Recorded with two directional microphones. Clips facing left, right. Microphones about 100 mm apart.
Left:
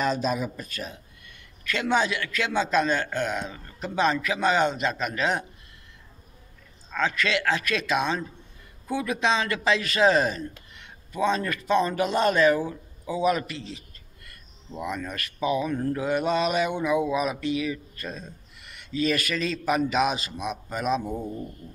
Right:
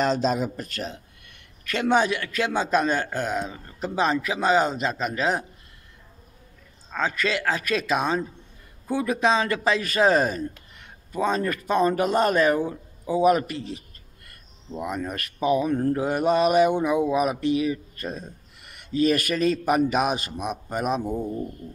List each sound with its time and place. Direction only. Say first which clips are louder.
0.0 s a man's voice: right 3 dB; 85° right
1.7 s a man's voice: right 3 dB; 45° right (ahead or behind)
6.9 s a man's voice: even; 35° right (ahead or behind)
12.5 s speech: right 3 dB; 35° right (ahead or behind)
14.7 s speech: right 3 dB; 25° right (ahead or behind)
15.4 s speech: right 4 dB; 45° right (ahead or behind)